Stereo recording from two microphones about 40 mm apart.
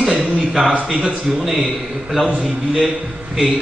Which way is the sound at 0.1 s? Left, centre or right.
Centre.